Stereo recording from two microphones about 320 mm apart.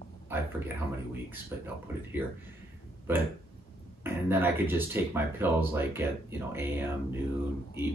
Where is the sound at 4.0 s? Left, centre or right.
Centre.